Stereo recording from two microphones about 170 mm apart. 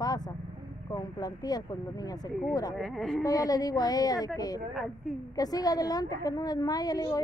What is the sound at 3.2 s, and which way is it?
A woman's voice, 20° left (ahead or behind).